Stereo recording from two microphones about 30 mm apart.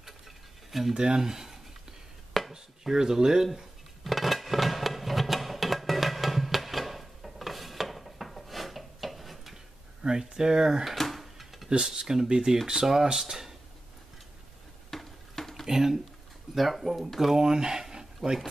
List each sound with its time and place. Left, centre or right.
0.7 s speech: centre
0.9 s speech: right
2.3 s chopping: centre
2.8 s speech: centre
4.0 s music: centre
10.0 s speech: right
11.0 s a sound: centre
11.8 s speech: centre
14.9 s a sound: centre
15.6 s speech: centre
16.5 s speech: centre
17.4 s speech: right